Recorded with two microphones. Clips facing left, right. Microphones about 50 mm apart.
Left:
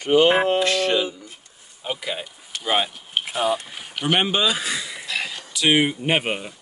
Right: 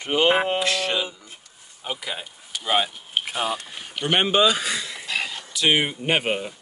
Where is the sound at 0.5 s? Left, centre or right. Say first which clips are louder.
Left 4 dB; centre.